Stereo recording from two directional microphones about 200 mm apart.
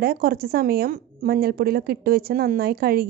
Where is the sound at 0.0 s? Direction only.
50° right (ahead or behind).